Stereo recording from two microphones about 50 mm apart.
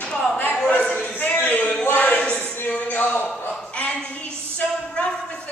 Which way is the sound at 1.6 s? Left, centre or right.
Left.